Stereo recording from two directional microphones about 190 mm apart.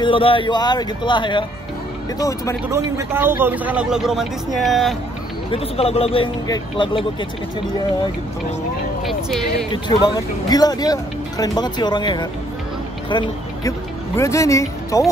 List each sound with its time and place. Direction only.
0.0 s speech: 25° left (ahead or behind)
2.7 s speech: 15° right (ahead or behind)
5.5 s speech: 30° left (ahead or behind)
9.0 s speech: centre (ahead or behind)
9.7 s speech: 20° left (ahead or behind)